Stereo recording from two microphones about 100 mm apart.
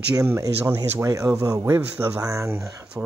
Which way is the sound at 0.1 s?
35° right (ahead or behind).